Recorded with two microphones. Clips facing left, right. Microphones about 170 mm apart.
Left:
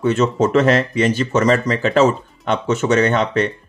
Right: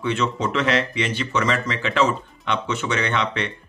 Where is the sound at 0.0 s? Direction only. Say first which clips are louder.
Left 7 dB; 45° left (ahead or behind).